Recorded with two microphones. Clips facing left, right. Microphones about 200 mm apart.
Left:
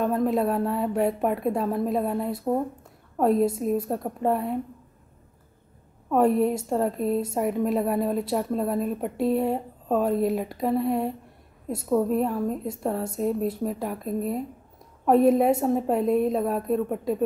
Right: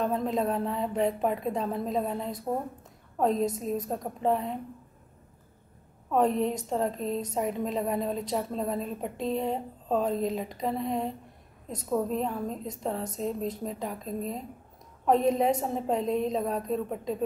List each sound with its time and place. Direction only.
0.0 s a woman's voice: 5° left (ahead or behind)
6.0 s a woman's voice: 5° left (ahead or behind)